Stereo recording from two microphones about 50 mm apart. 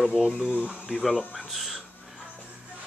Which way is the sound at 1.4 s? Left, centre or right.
Centre.